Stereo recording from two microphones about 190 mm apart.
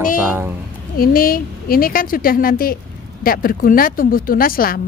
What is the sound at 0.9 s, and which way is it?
A woman's voice, 50° left (ahead or behind).